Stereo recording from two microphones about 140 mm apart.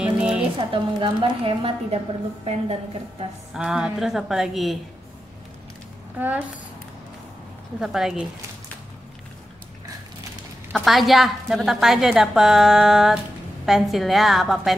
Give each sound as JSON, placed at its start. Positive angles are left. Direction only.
{"t": 0.0, "sound": "a sound", "side_deg": -5}
{"t": 0.6, "sound": "a woman's voice", "side_deg": -35}
{"t": 3.5, "sound": "a woman's voice", "side_deg": -5}
{"t": 6.1, "sound": "a woman's voice", "side_deg": -10}
{"t": 7.8, "sound": "a woman's voice", "side_deg": 0}
{"t": 10.7, "sound": "a woman's voice", "side_deg": 0}